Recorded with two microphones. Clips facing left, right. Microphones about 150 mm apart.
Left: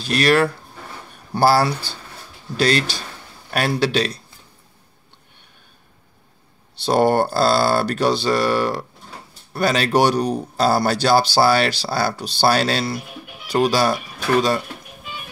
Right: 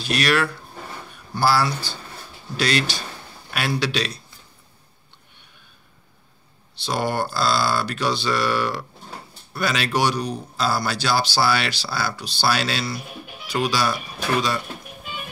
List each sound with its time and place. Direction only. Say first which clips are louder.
0.0 s speech: left 5 dB; 35° left (ahead or behind)
1.3 s speech: left 4 dB; 50° left (ahead or behind)
2.5 s speech: left 4 dB; 40° left (ahead or behind)
6.9 s speech: left 8 dB; 50° left (ahead or behind)